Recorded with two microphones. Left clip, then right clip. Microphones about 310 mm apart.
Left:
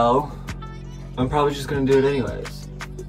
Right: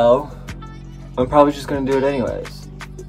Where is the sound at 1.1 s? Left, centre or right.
Centre.